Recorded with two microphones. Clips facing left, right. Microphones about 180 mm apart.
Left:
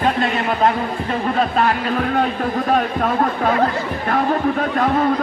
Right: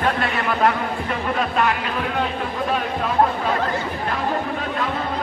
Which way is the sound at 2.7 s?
50° left (ahead or behind).